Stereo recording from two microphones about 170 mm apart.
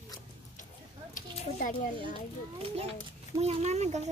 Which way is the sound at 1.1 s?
50° left (ahead or behind).